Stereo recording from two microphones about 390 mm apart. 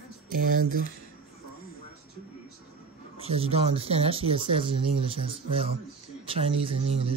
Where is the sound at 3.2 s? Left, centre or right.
Centre.